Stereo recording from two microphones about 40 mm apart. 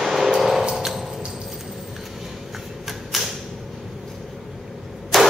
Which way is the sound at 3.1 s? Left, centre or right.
Centre.